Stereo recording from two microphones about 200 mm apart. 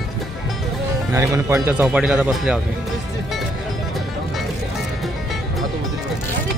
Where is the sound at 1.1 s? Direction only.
15° right (ahead or behind).